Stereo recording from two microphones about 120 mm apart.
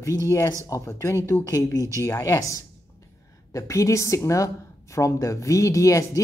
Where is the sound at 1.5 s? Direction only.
25° right (ahead or behind).